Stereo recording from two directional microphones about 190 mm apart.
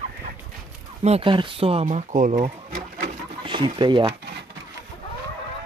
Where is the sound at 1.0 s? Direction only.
30° right (ahead or behind).